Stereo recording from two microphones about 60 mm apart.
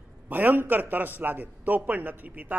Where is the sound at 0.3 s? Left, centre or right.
Right.